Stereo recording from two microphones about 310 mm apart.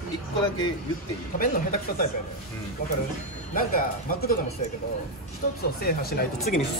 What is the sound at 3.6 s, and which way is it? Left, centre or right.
Speech, left.